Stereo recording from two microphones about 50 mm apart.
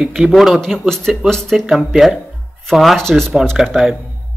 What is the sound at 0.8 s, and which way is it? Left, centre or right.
Speech, centre.